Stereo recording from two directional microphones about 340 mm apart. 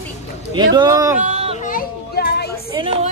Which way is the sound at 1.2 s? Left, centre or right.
Centre.